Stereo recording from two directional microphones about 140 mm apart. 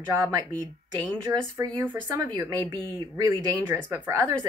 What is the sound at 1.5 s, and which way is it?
Speech, 15° right (ahead or behind).